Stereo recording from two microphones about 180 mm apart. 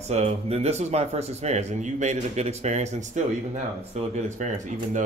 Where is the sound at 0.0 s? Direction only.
35° right (ahead or behind).